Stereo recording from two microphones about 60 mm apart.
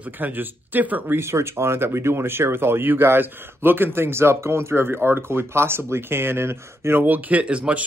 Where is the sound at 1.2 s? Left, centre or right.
Right.